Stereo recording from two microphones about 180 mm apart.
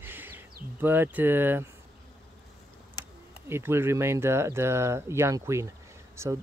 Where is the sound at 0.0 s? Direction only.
10° right (ahead or behind).